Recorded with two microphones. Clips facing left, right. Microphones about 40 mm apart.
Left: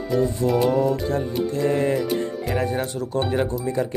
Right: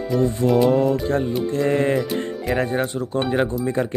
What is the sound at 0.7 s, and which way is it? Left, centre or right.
Music, right.